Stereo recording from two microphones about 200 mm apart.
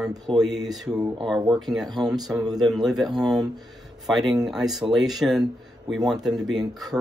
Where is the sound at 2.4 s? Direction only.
20° right (ahead or behind).